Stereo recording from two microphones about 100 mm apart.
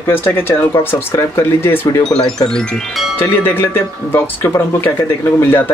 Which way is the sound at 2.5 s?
10° left (ahead or behind).